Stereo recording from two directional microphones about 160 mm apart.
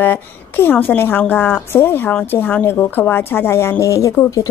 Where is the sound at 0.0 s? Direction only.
10° left (ahead or behind).